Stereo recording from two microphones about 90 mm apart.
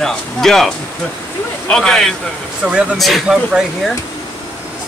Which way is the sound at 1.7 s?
5° left (ahead or behind).